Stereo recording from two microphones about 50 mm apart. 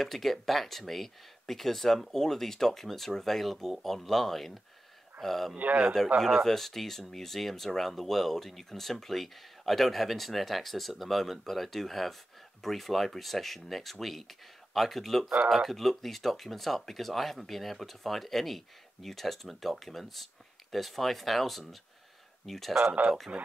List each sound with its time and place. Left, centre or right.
0.0 s speech: centre
5.6 s a man's voice: right
6.2 s speech: centre